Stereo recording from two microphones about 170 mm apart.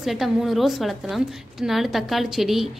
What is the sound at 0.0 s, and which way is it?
A woman's voice, centre (ahead or behind).